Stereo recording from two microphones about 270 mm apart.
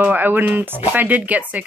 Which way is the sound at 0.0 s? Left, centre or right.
Centre.